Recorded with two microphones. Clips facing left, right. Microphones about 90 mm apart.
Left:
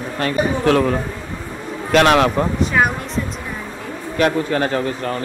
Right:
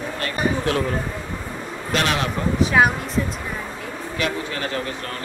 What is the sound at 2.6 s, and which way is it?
Speech, 5° right (ahead or behind).